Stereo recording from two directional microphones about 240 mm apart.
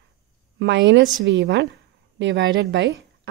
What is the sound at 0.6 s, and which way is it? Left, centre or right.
A woman's voice, right.